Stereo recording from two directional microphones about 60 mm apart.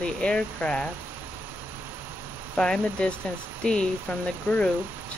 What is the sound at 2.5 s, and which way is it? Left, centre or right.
Speech, centre.